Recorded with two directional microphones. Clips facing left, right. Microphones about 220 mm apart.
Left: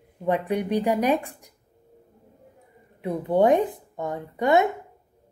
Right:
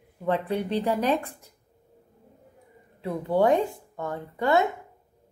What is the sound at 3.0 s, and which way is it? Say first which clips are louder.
Speech: left 2 dB; 20° left (ahead or behind).